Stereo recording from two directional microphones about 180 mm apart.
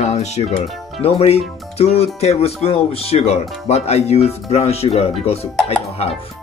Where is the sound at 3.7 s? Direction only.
35° left (ahead or behind).